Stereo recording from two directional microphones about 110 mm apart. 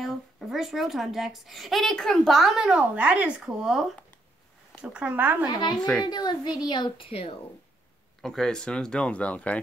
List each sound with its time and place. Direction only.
0.0 s a child's voice: centre (ahead or behind); by 5.5 s 15° right (ahead or behind)
5.6 s a woman's voice: 40° left (ahead or behind); by 7.3 s 60° left (ahead or behind)
8.2 s speech: 5° left (ahead or behind)